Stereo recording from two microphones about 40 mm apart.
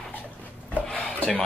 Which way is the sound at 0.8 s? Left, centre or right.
Centre.